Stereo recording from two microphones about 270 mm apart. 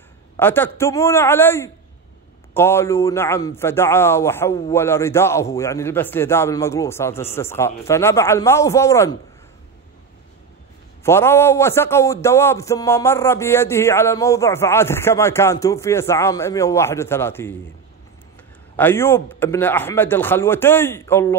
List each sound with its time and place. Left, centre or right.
0.4 s a man's voice: centre
11.1 s a man's voice: centre
18.8 s a man's voice: centre